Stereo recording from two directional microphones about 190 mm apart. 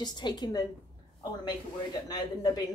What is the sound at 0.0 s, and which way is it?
Speech, 20° left (ahead or behind).